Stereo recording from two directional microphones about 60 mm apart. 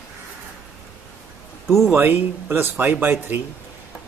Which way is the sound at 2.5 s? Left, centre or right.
Right.